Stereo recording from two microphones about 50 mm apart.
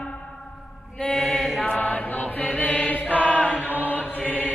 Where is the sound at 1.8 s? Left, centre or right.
Left.